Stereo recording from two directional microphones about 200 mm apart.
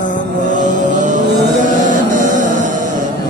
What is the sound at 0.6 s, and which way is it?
Music, 40° right (ahead or behind).